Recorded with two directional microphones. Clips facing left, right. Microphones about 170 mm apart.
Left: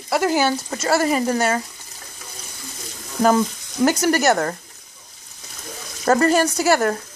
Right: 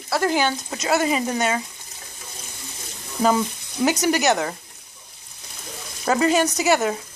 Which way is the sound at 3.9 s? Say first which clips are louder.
Even; 15° right (ahead or behind).